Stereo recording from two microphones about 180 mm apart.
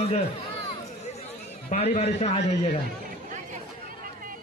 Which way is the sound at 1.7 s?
35° left (ahead or behind).